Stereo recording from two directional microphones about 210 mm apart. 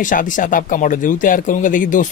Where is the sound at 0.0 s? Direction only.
40° left (ahead or behind).